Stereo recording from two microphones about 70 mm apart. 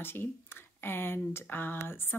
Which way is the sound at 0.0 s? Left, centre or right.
Left.